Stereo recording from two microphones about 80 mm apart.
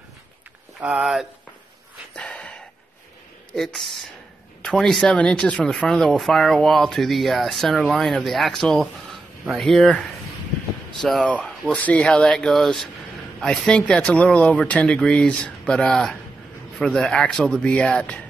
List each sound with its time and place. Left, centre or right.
0.8 s speech: centre
2.1 s gasp: centre
3.5 s speech: centre
12.2 s speech: centre